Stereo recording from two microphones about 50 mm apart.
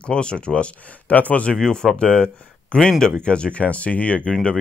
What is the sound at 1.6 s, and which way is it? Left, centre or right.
Speech, centre.